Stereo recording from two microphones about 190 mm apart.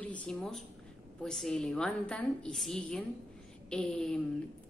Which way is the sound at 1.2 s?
Centre (ahead or behind).